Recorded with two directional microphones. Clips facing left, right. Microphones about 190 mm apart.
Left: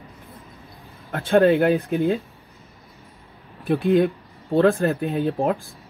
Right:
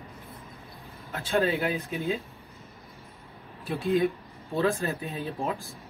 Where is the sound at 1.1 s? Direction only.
55° left (ahead or behind).